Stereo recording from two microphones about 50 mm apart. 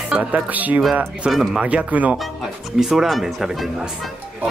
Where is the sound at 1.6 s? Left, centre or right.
Right.